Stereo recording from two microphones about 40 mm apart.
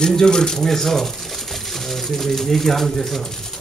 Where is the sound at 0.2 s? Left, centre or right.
Centre.